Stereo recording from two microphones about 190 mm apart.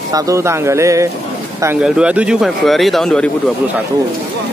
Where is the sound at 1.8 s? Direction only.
5° right (ahead or behind).